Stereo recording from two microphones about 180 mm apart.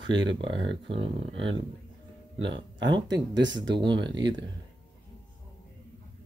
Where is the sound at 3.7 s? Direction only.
25° right (ahead or behind).